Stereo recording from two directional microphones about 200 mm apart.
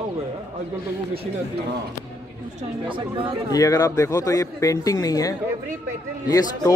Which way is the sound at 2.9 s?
25° right (ahead or behind).